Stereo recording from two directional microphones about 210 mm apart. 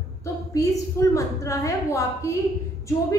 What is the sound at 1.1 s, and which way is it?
A woman's voice, 15° left (ahead or behind).